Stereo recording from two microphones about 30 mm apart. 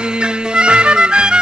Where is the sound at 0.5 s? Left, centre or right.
Right.